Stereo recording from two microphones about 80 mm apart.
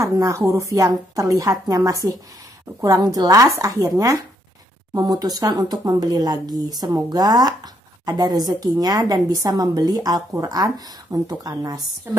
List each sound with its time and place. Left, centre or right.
0.0 s speech: right